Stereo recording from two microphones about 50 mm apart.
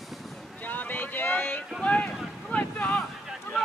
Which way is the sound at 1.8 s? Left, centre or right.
Left.